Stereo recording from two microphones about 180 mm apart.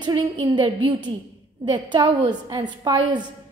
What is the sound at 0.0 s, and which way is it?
A woman's voice, 25° right (ahead or behind).